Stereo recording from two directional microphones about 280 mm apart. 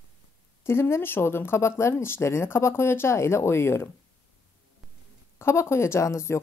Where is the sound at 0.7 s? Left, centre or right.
Centre.